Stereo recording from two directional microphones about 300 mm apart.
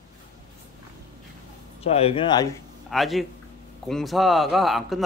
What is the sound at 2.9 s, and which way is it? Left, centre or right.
Speech, centre.